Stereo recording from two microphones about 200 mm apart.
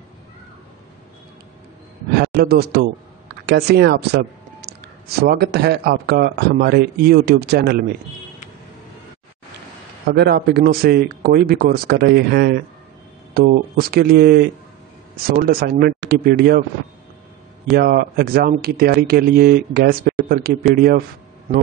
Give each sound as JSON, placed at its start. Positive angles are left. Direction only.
{"t": 2.1, "sound": "a man's voice", "side_deg": -50}
{"t": 10.0, "sound": "speech", "side_deg": -50}
{"t": 17.7, "sound": "speech", "side_deg": -50}